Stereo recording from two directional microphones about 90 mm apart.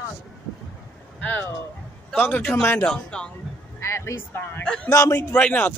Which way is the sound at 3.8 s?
30° left (ahead or behind).